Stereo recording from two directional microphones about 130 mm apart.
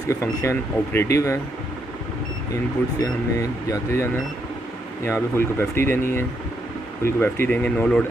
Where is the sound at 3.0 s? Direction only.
25° left (ahead or behind).